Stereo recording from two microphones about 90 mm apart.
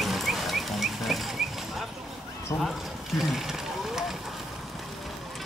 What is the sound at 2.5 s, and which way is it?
Speech, 35° left (ahead or behind).